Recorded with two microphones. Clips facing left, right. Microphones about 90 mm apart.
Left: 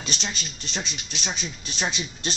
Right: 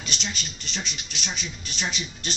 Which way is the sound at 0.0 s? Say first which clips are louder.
Left 1 dB; 35° left (ahead or behind).